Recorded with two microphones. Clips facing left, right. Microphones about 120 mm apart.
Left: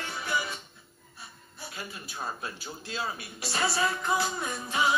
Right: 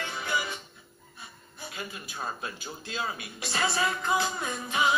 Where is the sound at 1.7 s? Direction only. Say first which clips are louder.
Right 2 dB; 20° right (ahead or behind).